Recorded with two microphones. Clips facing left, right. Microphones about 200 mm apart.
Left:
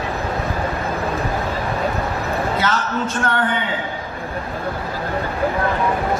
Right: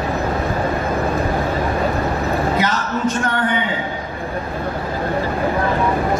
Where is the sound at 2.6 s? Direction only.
15° right (ahead or behind).